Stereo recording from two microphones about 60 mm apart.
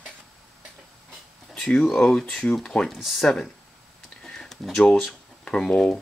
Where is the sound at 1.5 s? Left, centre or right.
Centre.